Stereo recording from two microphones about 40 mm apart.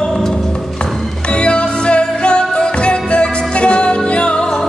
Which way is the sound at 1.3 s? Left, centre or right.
Left.